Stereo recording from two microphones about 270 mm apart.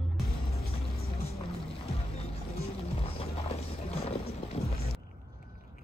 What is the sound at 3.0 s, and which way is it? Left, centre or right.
Music, left.